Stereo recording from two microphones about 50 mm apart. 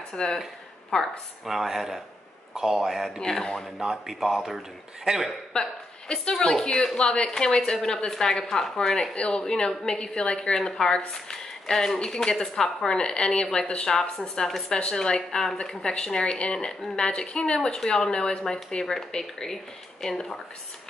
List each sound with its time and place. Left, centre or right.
0.1 s speech: centre
0.9 s speech: centre
3.2 s a woman's voice: centre
3.8 s speech: centre
5.5 s a sound: centre
6.2 s a woman's voice: centre